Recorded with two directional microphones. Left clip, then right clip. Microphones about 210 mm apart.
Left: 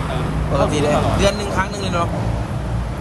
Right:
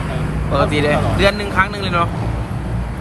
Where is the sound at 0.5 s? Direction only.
15° left (ahead or behind).